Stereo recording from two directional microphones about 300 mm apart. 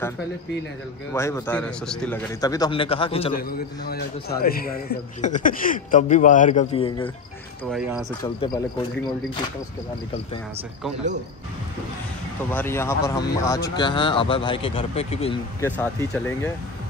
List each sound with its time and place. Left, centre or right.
1.1 s a man's voice: centre
3.4 s speech: left
8.2 s a man's voice: centre
12.4 s a man's voice: centre
15.6 s a man's voice: centre